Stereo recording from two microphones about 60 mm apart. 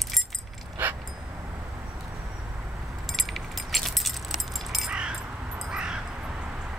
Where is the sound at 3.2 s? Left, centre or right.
Centre.